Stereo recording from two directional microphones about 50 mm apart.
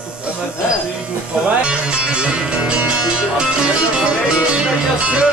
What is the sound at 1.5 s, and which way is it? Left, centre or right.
Speech, right.